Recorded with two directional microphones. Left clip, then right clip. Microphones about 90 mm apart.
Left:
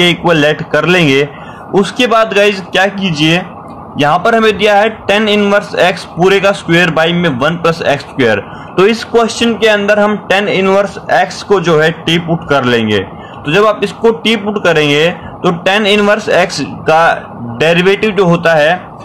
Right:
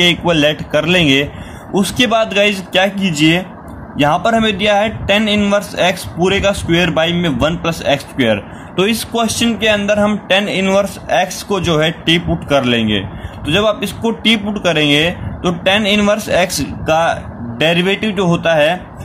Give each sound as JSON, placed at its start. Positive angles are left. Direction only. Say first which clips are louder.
{"t": 0.0, "sound": "a man's voice", "louder": "left 3 dB", "side_deg": -25}
{"t": 3.9, "sound": "a man's voice", "louder": "left 4 dB", "side_deg": -15}
{"t": 13.5, "sound": "a man's voice", "louder": "left 5 dB", "side_deg": -20}